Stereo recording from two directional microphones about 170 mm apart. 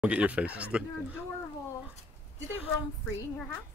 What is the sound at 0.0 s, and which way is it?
Speech, 5° right (ahead or behind).